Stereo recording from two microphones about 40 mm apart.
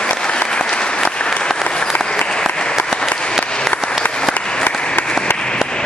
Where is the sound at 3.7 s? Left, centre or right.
Left.